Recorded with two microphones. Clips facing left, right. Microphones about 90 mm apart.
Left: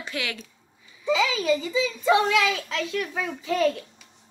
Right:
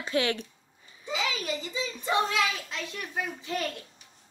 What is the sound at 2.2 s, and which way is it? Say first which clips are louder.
Speech: left 6 dB; 90° left.